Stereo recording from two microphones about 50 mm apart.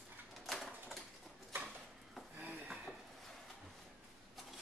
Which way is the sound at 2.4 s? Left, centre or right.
Right.